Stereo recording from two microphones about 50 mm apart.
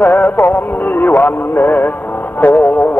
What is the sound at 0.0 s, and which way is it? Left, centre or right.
Music, left.